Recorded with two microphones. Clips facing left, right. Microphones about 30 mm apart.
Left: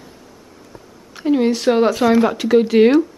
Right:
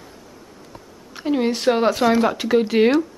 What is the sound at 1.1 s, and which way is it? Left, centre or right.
Speech, centre.